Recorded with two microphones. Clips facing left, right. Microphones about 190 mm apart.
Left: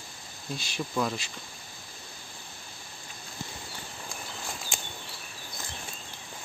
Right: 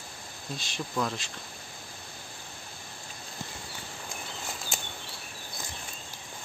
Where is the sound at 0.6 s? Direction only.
5° left (ahead or behind).